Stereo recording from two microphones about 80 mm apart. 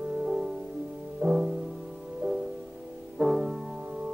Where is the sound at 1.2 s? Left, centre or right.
Centre.